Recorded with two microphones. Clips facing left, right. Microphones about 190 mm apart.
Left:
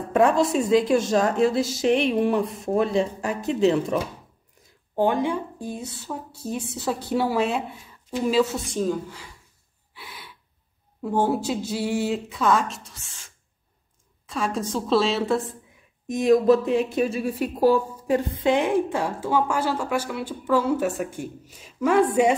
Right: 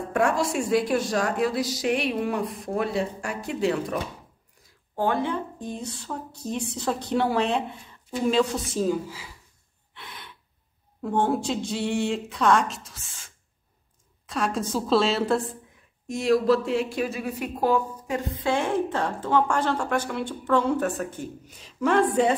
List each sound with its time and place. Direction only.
0.1 s a woman's voice: 20° left (ahead or behind)
4.9 s a woman's voice: 15° left (ahead or behind); by 9.3 s 5° right (ahead or behind)
9.9 s gasp: 5° left (ahead or behind)
11.0 s speech: 5° left (ahead or behind)
16.1 s a woman's voice: 20° left (ahead or behind)
18.4 s a woman's voice: 15° left (ahead or behind)